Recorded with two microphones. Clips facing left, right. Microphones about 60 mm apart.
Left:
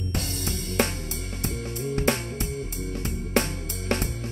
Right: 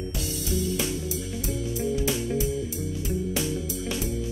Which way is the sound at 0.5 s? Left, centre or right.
Left.